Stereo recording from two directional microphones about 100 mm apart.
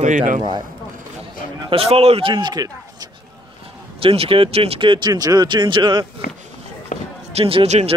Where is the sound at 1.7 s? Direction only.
80° right.